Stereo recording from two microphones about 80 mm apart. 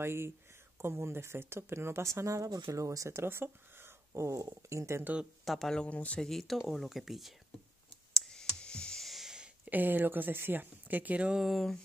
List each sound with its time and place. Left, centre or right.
0.0 s speech: right
3.1 s speech: right
5.4 s speech: centre
5.9 s speech: centre
6.2 s speech: centre
8.1 s clicking: centre
9.7 s speech: right
11.4 s speech: centre